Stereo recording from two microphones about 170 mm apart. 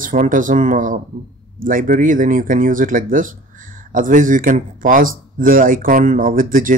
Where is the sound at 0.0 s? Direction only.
50° right (ahead or behind).